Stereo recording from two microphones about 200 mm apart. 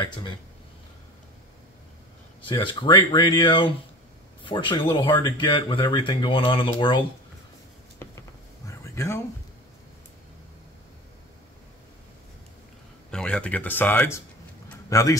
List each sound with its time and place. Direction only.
0.0 s speech: 20° left (ahead or behind)
2.4 s speech: 25° left (ahead or behind)
8.0 s a sound: 15° left (ahead or behind)
13.1 s speech: 5° left (ahead or behind)